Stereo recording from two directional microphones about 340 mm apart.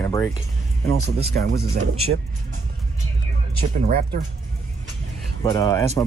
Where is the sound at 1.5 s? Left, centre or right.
Right.